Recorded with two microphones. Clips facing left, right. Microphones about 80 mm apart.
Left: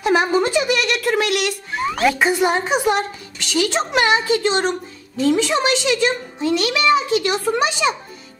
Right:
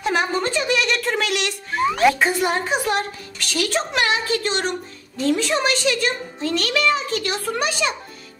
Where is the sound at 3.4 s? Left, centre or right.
Centre.